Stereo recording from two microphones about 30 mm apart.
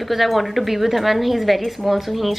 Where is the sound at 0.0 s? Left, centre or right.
Centre.